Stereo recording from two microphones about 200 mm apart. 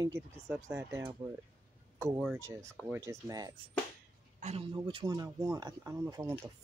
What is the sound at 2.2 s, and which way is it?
Speech, 10° right (ahead or behind).